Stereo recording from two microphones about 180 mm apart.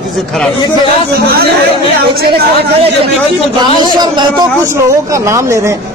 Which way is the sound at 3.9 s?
20° right (ahead or behind).